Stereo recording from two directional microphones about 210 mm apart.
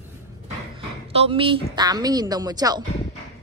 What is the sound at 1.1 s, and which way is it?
A woman's voice, 25° right (ahead or behind).